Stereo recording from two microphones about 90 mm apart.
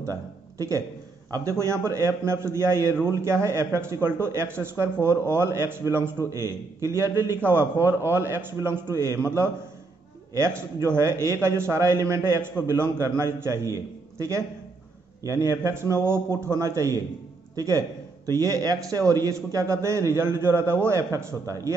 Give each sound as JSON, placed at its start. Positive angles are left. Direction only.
{"t": 0.0, "sound": "a man's voice", "side_deg": -35}